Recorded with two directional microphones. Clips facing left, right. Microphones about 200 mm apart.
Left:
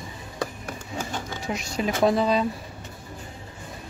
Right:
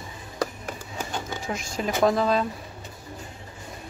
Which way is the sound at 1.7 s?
5° left (ahead or behind).